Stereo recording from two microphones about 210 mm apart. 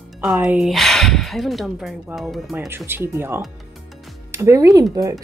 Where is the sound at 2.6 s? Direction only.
10° right (ahead or behind).